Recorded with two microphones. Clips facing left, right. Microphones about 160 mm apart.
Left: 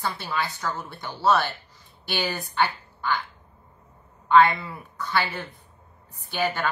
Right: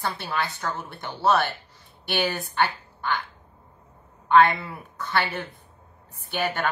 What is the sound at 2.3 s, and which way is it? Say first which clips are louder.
Speech: right 2 dB; 25° right (ahead or behind).